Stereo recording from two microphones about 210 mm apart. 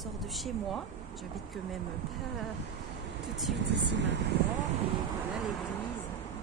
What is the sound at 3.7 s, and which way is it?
Vehicle, 55° right (ahead or behind).